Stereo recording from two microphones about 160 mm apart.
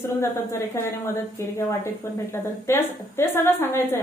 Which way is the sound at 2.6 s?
15° left (ahead or behind).